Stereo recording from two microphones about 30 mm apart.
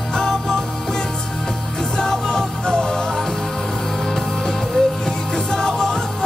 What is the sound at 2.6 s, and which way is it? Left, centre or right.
Music, left.